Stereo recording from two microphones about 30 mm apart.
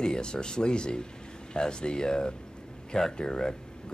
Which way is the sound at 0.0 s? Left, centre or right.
Left.